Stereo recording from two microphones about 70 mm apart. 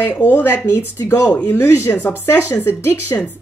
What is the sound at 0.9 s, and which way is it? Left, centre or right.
Speech, left.